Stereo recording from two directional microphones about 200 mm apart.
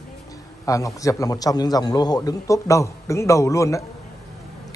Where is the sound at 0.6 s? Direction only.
15° left (ahead or behind).